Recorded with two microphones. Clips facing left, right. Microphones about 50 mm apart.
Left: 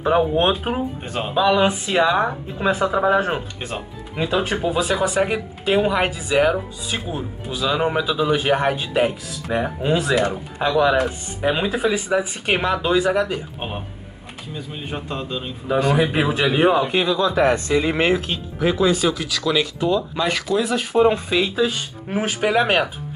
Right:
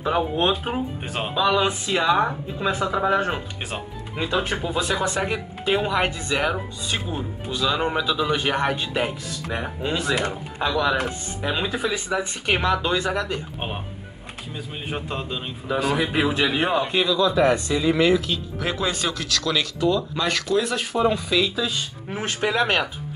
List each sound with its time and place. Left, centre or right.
0.0 s speech: left
1.0 s speech: centre
1.4 s a man's voice: centre
14.5 s speech: centre
15.7 s a man's voice: centre
17.1 s speech: left
18.6 s speech: centre
20.9 s speech: left
22.1 s speech: centre